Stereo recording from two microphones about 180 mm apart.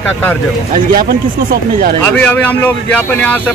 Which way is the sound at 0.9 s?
50° right (ahead or behind).